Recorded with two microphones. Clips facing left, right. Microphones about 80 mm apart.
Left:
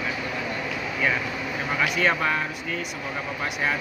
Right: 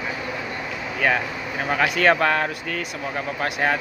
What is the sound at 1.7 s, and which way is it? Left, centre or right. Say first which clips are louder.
Speech: right 5 dB; right.